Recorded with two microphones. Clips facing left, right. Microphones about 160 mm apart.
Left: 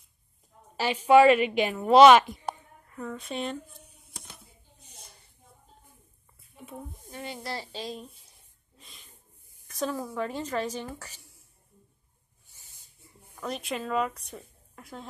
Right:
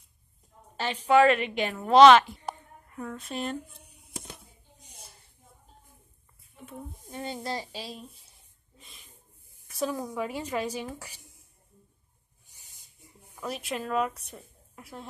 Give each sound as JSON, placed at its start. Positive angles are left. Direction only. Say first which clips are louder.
{"t": 0.7, "sound": "a woman's voice", "louder": "left 3 dB", "side_deg": 10}
{"t": 2.9, "sound": "speech", "louder": "left 1 dB", "side_deg": -5}
{"t": 3.5, "sound": "a sound", "louder": "right 2 dB", "side_deg": -10}
{"t": 7.1, "sound": "speech", "louder": "right 3 dB", "side_deg": -25}
{"t": 7.8, "sound": "speech", "louder": "left 4 dB", "side_deg": 0}
{"t": 8.7, "sound": "rub", "louder": "even", "side_deg": 0}
{"t": 9.7, "sound": "a woman's voice", "louder": "right 1 dB", "side_deg": -10}
{"t": 12.4, "sound": "a sound", "louder": "even", "side_deg": -15}
{"t": 13.4, "sound": "a woman's voice", "louder": "left 1 dB", "side_deg": -5}